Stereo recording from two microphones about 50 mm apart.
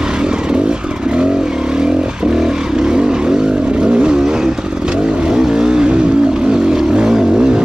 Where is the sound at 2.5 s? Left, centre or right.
Centre.